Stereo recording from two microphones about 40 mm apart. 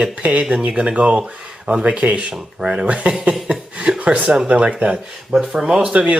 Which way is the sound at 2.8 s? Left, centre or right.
Right.